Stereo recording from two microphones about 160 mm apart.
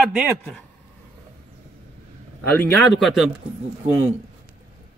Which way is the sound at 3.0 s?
Centre (ahead or behind).